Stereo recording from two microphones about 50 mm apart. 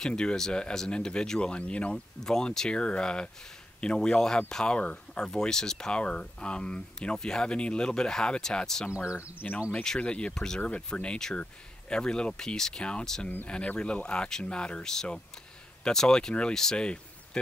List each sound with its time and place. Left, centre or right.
0.0 s speech: centre
2.2 s speech: centre
8.9 s speech: right
9.4 s speech: left
9.9 s speech: left